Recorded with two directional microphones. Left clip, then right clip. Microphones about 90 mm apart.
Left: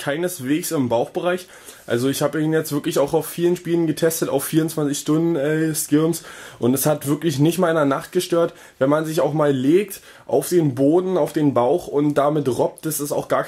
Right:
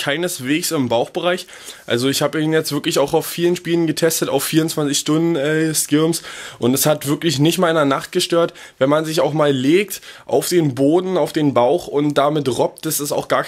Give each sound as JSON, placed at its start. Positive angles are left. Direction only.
{"t": 0.0, "sound": "speech", "side_deg": -20}